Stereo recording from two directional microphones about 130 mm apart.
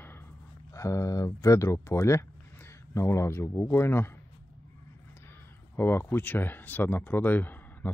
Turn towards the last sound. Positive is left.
turn(degrees=15)  # may be behind; listen again after turning